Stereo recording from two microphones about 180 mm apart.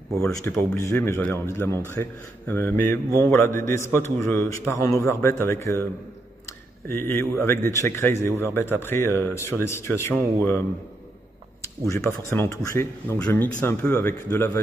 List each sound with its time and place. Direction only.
0.7 s a man's voice: 15° left (ahead or behind)
6.9 s a man's voice: 15° left (ahead or behind)
11.9 s a man's voice: 15° left (ahead or behind)